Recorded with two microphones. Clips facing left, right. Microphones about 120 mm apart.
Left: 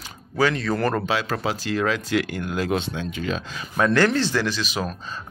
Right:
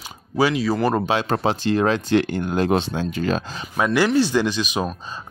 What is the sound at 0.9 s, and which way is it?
Speech, 20° right (ahead or behind).